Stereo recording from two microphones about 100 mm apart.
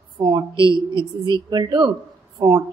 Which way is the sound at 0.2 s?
45° right (ahead or behind).